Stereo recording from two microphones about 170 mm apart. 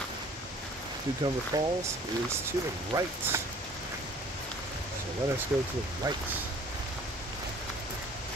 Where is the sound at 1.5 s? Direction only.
20° right (ahead or behind).